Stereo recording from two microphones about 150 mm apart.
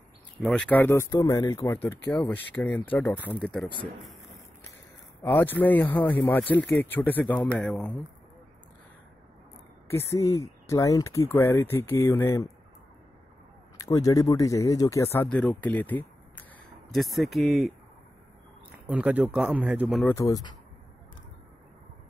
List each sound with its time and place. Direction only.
0.4 s speech: 5° left (ahead or behind)
3.3 s speech: 5° left (ahead or behind)
5.2 s speech: 15° left (ahead or behind)
9.8 s speech: 20° left (ahead or behind)
13.7 s speech: 25° left (ahead or behind)
16.9 s speech: centre (ahead or behind)
18.9 s speech: 10° right (ahead or behind)
20.1 s speech: 20° left (ahead or behind)